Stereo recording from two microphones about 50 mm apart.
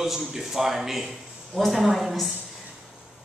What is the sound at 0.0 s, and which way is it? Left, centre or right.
A woman's voice, centre.